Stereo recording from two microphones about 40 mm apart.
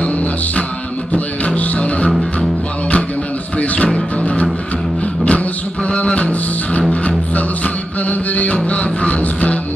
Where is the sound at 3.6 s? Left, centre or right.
Left.